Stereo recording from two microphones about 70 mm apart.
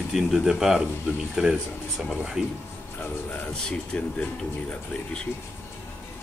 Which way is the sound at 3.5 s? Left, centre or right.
Centre.